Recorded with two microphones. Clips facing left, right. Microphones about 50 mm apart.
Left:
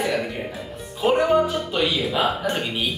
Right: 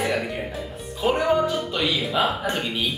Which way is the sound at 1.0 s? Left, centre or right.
Centre.